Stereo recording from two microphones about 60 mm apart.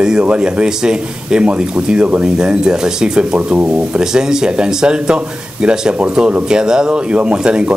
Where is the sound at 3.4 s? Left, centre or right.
Right.